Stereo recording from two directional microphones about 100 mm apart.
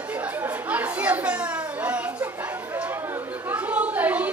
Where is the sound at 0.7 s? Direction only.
15° right (ahead or behind).